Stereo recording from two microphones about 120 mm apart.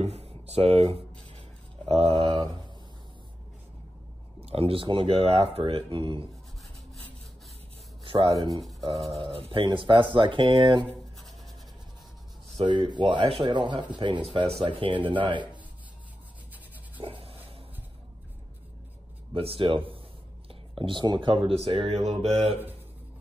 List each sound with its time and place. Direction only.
0.0 s a sound: 60° right (ahead or behind)
1.9 s speech: 55° right (ahead or behind)
4.4 s a sound: 55° right (ahead or behind)
4.8 s speech: 45° right (ahead or behind)
8.0 s rub: 50° right (ahead or behind)
8.4 s speech: 30° right (ahead or behind)
8.8 s speech: 55° right (ahead or behind)
12.6 s speech: 40° right (ahead or behind)
17.0 s writing: 50° right (ahead or behind)
19.3 s speech: 50° right (ahead or behind)
20.4 s a sound: 45° right (ahead or behind)
21.5 s speech: 50° right (ahead or behind)